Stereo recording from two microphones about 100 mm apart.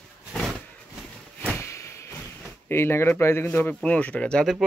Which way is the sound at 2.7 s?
25° left (ahead or behind).